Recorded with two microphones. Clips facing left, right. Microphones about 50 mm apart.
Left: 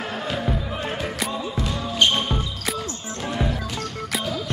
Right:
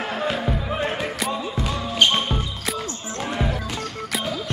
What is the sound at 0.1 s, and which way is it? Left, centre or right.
Music, right.